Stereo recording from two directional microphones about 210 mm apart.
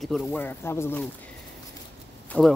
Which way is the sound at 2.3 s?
5° left (ahead or behind).